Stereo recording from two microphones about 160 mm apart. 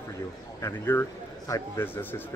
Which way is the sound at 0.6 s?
15° left (ahead or behind).